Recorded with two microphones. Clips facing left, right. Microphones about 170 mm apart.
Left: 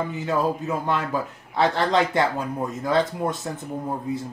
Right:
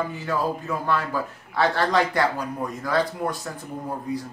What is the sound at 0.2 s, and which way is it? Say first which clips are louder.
Speech: left 2 dB; 20° left (ahead or behind).